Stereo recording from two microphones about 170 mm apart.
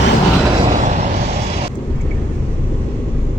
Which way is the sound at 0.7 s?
45° right (ahead or behind).